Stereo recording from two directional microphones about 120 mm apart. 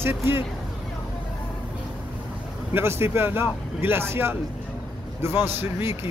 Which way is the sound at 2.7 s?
20° right (ahead or behind).